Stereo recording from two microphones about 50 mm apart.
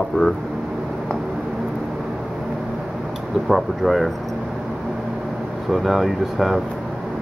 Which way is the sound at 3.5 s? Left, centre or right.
Centre.